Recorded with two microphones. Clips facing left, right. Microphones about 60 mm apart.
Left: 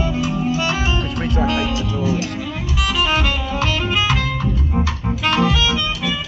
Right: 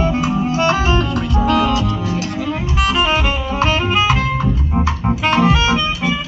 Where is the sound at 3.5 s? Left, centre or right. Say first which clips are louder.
Right 6 dB; right.